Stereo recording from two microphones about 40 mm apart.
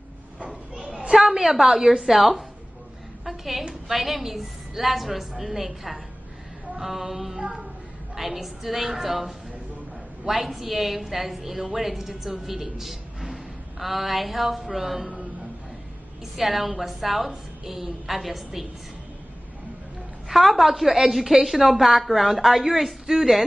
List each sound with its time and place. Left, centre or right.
0.7 s a sound: centre
1.1 s a woman's voice: centre
3.3 s a sound: centre
3.9 s a woman's voice: centre
16.3 s a woman's voice: centre
20.2 s a woman's voice: centre